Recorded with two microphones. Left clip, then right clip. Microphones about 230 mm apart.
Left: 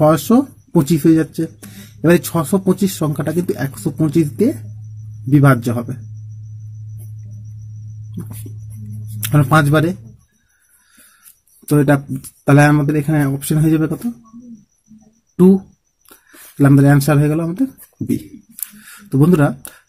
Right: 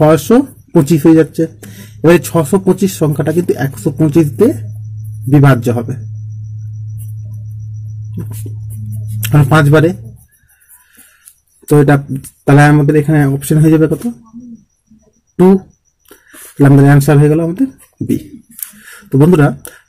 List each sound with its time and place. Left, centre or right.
0.0 s speech: centre
9.3 s speech: centre
11.6 s speech: centre
16.1 s speech: centre
18.8 s a sound: centre